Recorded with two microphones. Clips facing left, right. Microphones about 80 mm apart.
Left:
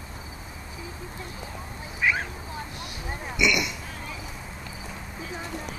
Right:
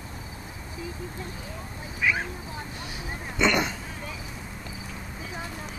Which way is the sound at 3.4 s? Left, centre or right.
Right.